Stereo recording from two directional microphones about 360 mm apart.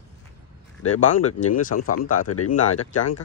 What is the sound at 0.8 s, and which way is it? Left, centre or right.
Speech, left.